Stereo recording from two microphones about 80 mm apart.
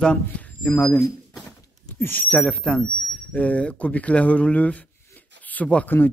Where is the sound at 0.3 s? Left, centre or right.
Centre.